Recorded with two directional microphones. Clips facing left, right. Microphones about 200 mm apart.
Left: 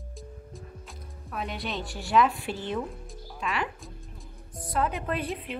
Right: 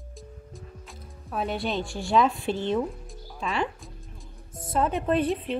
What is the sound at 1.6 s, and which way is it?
Water, centre (ahead or behind).